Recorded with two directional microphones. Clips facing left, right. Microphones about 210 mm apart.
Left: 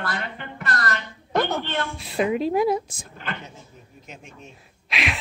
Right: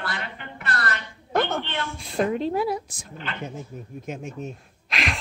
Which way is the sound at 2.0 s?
10° left (ahead or behind).